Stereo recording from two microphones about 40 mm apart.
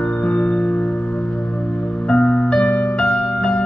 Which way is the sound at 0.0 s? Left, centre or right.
Left.